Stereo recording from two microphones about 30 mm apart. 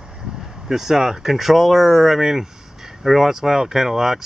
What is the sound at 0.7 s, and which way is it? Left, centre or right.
Speech, centre.